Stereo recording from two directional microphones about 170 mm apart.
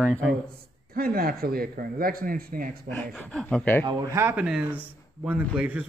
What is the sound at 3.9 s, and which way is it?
Speech, 20° right (ahead or behind).